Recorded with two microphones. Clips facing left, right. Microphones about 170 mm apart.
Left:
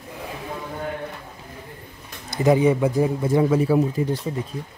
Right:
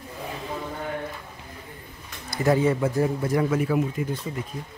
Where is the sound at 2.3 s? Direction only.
15° left (ahead or behind).